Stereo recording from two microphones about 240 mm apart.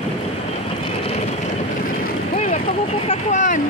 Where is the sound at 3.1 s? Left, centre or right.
Left.